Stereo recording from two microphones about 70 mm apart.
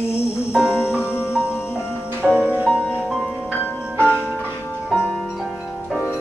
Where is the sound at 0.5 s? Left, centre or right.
Centre.